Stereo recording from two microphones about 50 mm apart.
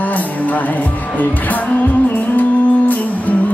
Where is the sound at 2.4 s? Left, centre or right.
Left.